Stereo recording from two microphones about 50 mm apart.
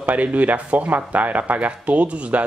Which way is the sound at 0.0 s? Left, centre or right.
Right.